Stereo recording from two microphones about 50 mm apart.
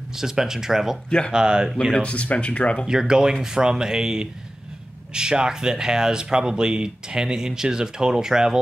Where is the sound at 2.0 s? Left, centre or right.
Left.